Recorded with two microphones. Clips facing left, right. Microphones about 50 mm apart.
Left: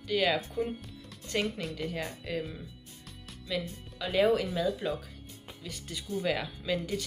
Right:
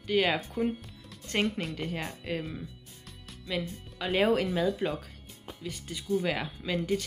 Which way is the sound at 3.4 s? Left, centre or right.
Right.